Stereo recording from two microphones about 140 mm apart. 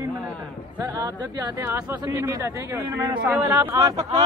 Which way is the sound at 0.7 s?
25° right (ahead or behind).